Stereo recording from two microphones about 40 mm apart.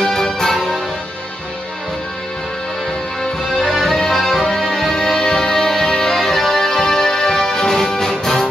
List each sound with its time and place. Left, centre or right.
0.0 s music: centre
3.5 s music: centre
4.9 s music: centre